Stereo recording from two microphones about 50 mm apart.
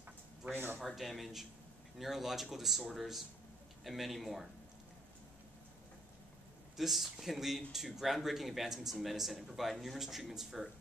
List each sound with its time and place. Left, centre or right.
0.5 s speech: right
0.8 s speech: centre
6.8 s speech: centre